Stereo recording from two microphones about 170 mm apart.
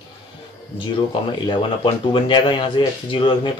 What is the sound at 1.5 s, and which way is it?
Speech, 30° left (ahead or behind).